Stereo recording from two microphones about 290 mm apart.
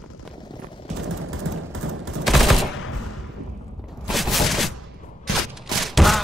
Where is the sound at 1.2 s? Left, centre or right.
Right.